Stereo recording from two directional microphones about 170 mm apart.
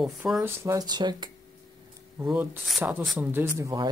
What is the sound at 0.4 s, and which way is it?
Speech, 15° right (ahead or behind).